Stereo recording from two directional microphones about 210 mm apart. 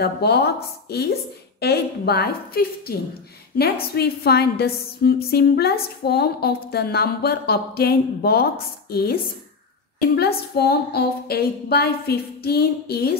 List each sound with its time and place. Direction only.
0.0 s a woman's voice: 50° left (ahead or behind)